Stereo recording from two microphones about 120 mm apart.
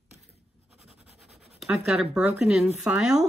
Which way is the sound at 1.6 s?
Centre (ahead or behind).